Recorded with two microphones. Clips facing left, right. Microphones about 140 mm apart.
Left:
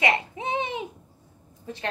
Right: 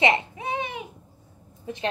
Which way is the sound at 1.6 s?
15° right (ahead or behind).